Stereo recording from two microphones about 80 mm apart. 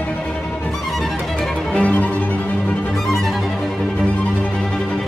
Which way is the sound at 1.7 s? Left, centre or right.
Centre.